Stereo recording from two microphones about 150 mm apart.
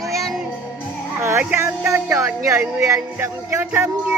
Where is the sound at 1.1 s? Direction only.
15° right (ahead or behind).